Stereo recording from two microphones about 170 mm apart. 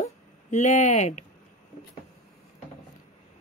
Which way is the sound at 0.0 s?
45° left (ahead or behind).